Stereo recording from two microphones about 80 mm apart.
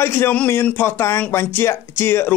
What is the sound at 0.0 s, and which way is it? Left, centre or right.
Speech, left.